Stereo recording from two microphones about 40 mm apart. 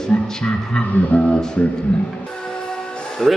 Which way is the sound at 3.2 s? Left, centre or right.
Centre.